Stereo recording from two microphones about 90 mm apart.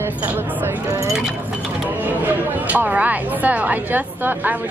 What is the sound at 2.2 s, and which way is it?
A woman's voice, 20° right (ahead or behind).